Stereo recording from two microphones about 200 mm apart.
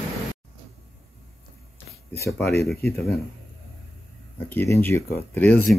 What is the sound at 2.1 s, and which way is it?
Speech, 15° left (ahead or behind).